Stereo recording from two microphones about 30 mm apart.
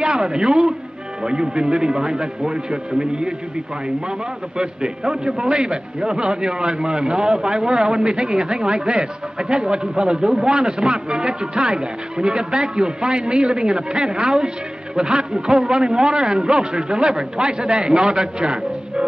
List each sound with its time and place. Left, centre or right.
0.0 s a man's voice: right
4.6 s a man's voice: right